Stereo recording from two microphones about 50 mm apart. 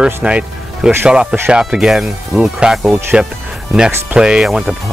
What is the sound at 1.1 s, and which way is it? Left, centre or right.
Speech, centre.